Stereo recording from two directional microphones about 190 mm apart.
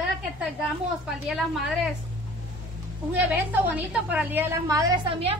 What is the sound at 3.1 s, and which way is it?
A woman's voice, 10° right (ahead or behind).